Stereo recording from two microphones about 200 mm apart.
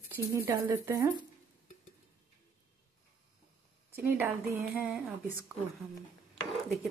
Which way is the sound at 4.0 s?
10° right (ahead or behind).